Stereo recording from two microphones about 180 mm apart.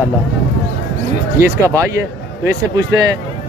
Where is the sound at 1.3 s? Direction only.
15° right (ahead or behind).